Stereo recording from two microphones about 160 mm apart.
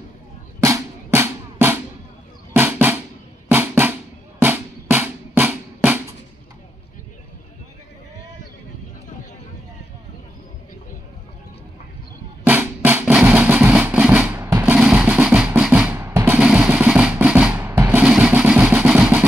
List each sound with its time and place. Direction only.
0.6 s drum: 20° right (ahead or behind)
4.4 s music: 10° right (ahead or behind)
12.4 s music: 10° right (ahead or behind)
14.6 s drum: 5° right (ahead or behind)
16.3 s drum: 5° right (ahead or behind)